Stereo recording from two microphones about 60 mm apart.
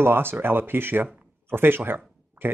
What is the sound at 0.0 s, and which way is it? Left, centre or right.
Speech, right.